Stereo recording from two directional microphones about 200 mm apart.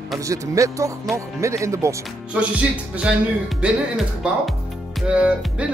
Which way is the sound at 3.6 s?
5° right (ahead or behind).